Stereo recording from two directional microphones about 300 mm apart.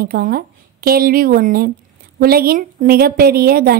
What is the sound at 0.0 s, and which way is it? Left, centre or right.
A woman's voice, right.